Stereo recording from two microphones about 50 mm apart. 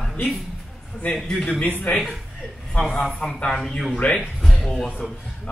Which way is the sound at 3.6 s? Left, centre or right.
Centre.